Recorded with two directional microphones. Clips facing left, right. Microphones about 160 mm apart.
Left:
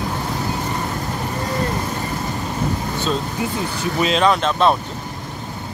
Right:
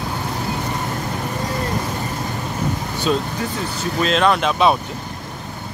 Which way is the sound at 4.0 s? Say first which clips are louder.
Even; centre (ahead or behind).